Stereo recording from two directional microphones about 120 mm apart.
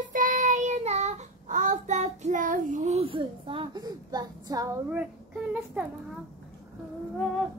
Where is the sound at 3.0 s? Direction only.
45° right (ahead or behind).